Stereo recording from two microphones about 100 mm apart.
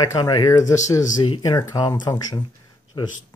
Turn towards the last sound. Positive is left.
turn(degrees=50)  # may be behind; listen again after turning